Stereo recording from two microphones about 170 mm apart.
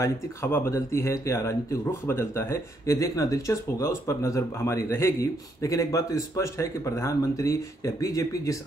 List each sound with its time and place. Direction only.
0.0 s speech: 15° left (ahead or behind)